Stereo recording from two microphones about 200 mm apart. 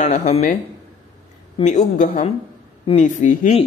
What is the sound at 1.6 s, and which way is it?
A man's voice, 35° left (ahead or behind).